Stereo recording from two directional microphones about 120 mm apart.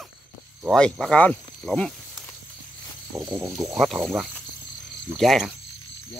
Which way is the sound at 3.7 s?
5° right (ahead or behind).